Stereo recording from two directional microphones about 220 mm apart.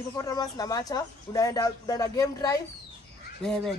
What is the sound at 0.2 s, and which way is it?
Speech, 15° left (ahead or behind).